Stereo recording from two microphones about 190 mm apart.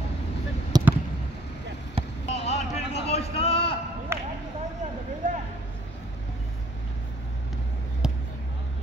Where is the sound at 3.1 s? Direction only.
30° left (ahead or behind).